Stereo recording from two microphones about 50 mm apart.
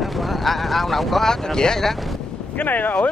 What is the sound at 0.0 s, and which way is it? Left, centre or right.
Speech, centre.